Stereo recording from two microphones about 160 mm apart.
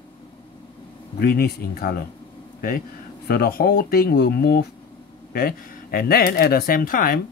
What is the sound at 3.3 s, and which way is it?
Speech, 75° left (ahead or behind).